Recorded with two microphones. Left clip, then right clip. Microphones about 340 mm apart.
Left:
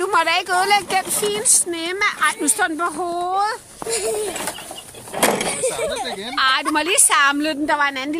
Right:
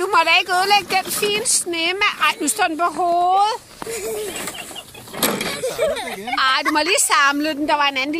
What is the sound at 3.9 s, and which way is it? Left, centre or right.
Speech, left.